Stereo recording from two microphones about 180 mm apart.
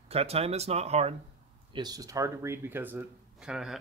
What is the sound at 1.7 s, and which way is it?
Speech, 20° right (ahead or behind).